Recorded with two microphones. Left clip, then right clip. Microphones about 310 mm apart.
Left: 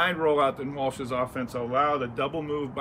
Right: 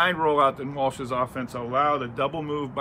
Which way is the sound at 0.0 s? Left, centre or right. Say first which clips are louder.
Right 3 dB; centre.